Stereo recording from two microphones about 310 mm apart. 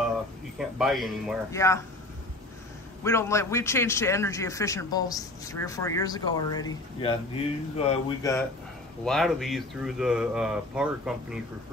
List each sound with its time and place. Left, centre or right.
0.6 s a man's voice: centre
3.0 s a man's voice: centre